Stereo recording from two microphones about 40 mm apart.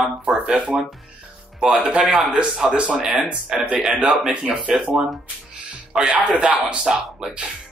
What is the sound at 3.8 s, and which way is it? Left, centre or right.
Speech, centre.